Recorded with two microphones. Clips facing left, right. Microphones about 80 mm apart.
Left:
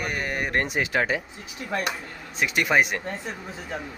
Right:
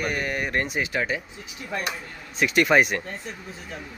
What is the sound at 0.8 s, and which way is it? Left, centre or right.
Speech, left.